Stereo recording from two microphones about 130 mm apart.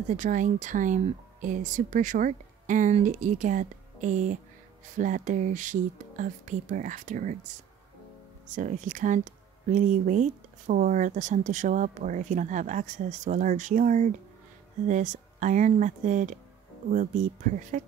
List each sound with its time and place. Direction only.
0.1 s speech: 75° right (ahead or behind)
8.5 s speech: 75° right (ahead or behind)